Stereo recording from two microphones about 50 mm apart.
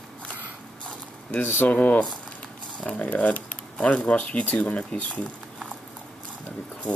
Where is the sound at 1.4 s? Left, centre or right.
Left.